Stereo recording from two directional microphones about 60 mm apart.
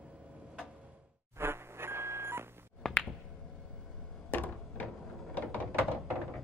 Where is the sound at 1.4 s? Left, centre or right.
Right.